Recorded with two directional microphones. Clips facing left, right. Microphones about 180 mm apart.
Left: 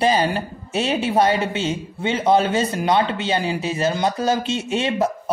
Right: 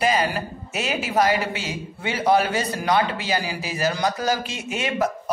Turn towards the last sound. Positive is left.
turn(degrees=30)  # may be behind; listen again after turning